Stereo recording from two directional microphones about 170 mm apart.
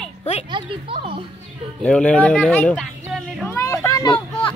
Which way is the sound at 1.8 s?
5° left (ahead or behind).